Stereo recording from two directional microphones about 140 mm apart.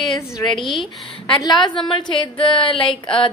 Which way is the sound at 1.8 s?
35° left (ahead or behind).